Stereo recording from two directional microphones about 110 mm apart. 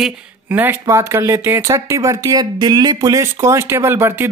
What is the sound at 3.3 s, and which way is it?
Speech, 25° right (ahead or behind).